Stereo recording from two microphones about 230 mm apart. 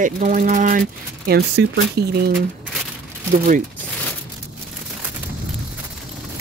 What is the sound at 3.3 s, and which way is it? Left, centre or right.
Speech, right.